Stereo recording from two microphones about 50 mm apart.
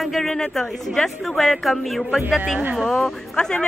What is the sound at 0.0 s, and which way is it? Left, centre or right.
Speech, centre.